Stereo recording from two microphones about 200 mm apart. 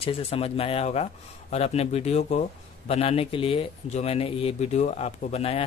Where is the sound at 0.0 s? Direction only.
30° left (ahead or behind).